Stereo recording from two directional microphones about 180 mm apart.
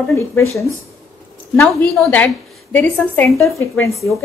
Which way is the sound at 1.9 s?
5° left (ahead or behind).